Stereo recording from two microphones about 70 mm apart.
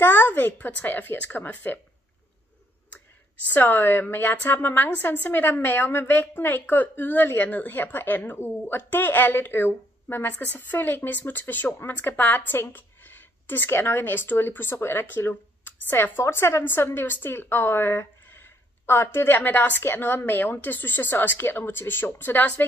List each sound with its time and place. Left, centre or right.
0.0 s a woman's voice: left
3.5 s a woman's voice: left